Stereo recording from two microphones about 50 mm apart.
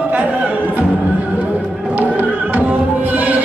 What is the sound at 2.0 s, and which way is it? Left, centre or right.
Music, right.